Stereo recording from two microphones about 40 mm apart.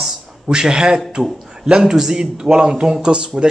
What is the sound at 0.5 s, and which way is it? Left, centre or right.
Speech, centre.